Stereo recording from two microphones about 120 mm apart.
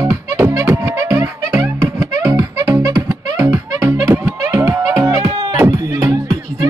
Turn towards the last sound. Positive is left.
turn(degrees=-30)  # may be behind; listen again after turning